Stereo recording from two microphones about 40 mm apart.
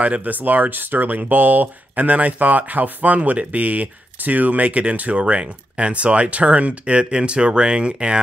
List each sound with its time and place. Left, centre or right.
0.0 s speech: right